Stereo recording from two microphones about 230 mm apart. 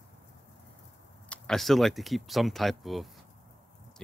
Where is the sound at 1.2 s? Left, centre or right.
Centre.